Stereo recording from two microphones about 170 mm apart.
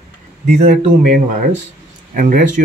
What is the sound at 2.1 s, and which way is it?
Speech, 55° right (ahead or behind).